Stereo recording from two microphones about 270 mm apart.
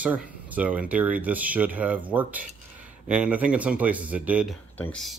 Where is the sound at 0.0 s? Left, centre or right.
Centre.